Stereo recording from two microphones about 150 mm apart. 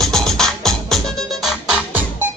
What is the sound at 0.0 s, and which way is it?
Music, 5° left (ahead or behind).